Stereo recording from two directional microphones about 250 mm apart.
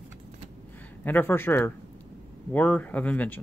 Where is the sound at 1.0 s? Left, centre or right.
Centre.